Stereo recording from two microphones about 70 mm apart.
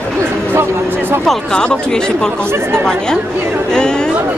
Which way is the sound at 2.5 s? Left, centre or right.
Right.